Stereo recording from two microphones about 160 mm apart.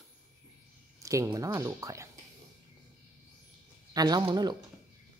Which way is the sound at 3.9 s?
25° right (ahead or behind).